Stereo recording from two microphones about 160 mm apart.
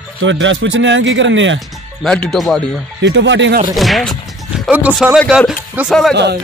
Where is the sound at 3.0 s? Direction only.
90° right.